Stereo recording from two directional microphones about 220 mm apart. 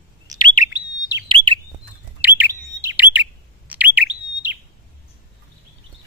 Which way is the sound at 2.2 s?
10° right (ahead or behind).